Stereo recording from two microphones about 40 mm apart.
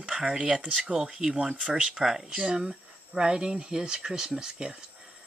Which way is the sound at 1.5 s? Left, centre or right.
Right.